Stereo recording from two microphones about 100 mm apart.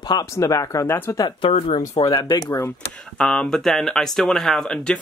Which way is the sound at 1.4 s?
70° left (ahead or behind).